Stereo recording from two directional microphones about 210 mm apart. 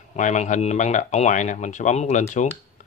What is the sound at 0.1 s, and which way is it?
Speech, 35° left (ahead or behind).